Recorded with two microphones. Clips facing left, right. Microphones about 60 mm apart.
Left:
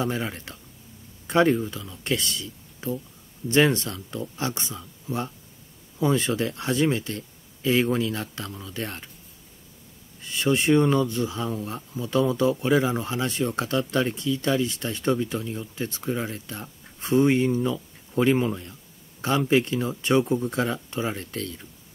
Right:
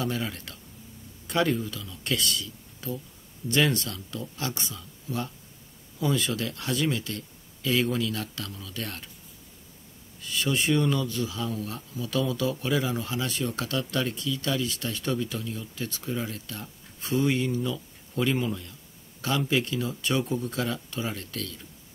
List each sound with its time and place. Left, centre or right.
0.0 s speech: left
10.2 s speech: left